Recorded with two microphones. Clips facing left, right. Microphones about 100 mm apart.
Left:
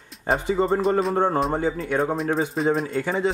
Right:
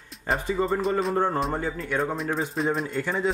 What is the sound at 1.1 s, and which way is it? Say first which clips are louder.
Speech: left 3 dB; 20° left (ahead or behind).